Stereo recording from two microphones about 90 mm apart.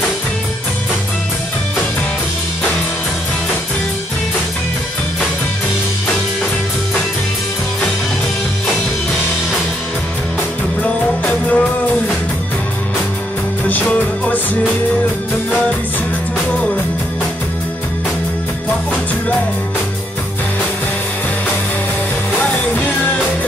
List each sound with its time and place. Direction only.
10.8 s music: 15° left (ahead or behind)
13.7 s music: 15° left (ahead or behind)
22.4 s music: 15° left (ahead or behind)